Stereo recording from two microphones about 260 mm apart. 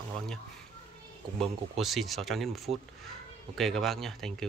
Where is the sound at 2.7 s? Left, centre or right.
Right.